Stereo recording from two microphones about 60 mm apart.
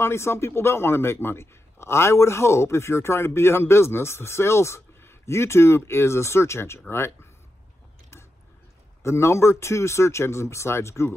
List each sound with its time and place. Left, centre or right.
0.0 s a man's voice: left
9.0 s a man's voice: left